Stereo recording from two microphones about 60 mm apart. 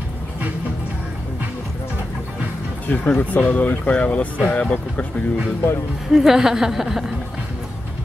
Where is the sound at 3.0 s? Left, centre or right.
Left.